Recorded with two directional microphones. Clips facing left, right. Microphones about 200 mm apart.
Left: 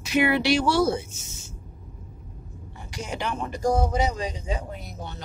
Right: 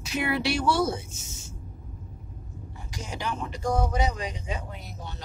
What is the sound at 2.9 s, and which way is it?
Speech, 65° left (ahead or behind).